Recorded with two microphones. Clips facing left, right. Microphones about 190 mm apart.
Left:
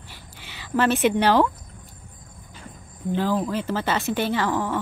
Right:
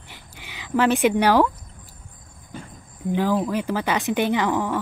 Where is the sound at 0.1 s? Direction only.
15° right (ahead or behind).